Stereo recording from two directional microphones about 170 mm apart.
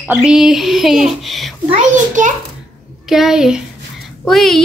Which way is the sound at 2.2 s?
50° right (ahead or behind).